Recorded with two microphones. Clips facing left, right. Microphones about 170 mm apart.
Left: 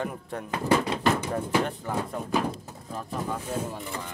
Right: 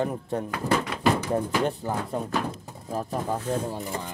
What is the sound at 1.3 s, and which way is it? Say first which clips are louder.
Speech: right 2 dB; 30° right (ahead or behind).